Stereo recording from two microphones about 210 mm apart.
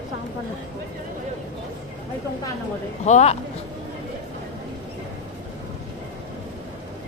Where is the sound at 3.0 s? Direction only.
30° left (ahead or behind).